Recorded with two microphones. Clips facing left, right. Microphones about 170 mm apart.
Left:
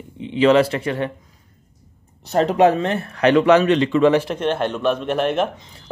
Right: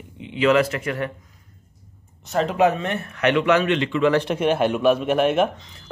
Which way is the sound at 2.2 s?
35° left (ahead or behind).